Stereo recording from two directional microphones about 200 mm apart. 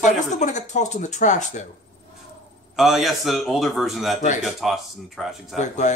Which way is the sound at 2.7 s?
Centre (ahead or behind).